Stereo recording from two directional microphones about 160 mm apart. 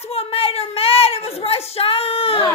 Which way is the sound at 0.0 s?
40° left (ahead or behind).